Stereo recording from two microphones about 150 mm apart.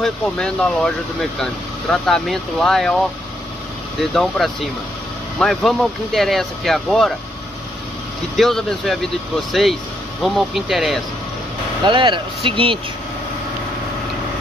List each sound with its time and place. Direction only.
0.0 s speech: 5° left (ahead or behind)
4.1 s speech: 5° left (ahead or behind)
8.4 s speech: centre (ahead or behind)
11.8 s speech: 35° right (ahead or behind)